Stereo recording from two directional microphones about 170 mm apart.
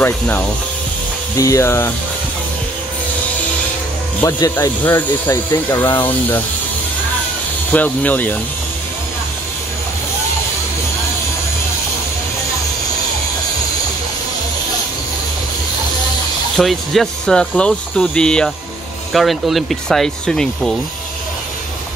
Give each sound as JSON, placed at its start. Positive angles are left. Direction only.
{"t": 1.4, "sound": "speech", "side_deg": 15}
{"t": 4.2, "sound": "speech", "side_deg": 15}
{"t": 7.7, "sound": "speech", "side_deg": 10}
{"t": 16.5, "sound": "speech", "side_deg": 0}